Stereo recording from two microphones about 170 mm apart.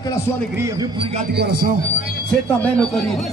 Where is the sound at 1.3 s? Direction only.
70° right (ahead or behind).